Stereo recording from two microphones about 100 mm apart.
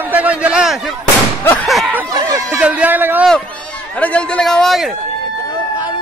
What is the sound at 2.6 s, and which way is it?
Speech, 15° right (ahead or behind).